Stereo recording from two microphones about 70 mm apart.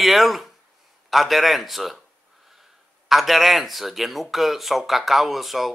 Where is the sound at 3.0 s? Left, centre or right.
Centre.